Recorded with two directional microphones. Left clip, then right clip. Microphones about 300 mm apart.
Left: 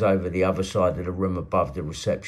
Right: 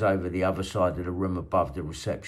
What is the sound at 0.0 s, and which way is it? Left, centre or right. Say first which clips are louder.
Speech: left 3 dB; right.